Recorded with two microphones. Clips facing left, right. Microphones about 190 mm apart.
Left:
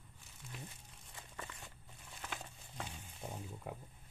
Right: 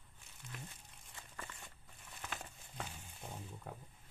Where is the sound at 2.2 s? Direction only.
Centre (ahead or behind).